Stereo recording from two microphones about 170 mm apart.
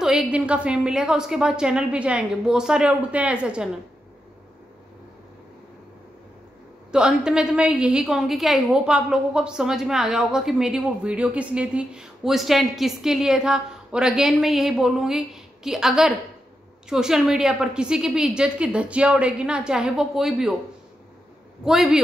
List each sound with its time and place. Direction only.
0.0 s a woman's voice: 5° right (ahead or behind)
6.9 s a woman's voice: 5° right (ahead or behind)
21.6 s a woman's voice: centre (ahead or behind)